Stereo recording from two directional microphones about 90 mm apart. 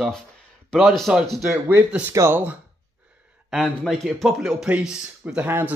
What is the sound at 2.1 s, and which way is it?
Speech, 30° right (ahead or behind).